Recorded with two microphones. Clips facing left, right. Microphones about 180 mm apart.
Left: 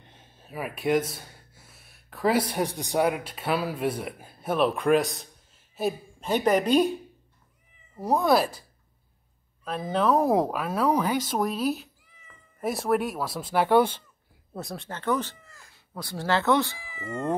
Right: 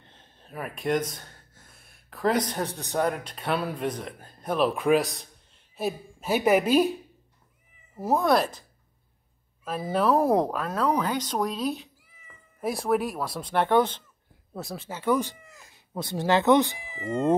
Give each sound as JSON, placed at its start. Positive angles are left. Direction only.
{"t": 0.0, "sound": "speech", "side_deg": 10}
{"t": 9.7, "sound": "speech", "side_deg": -5}